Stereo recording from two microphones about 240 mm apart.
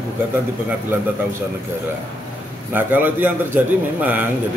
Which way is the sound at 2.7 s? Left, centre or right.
Centre.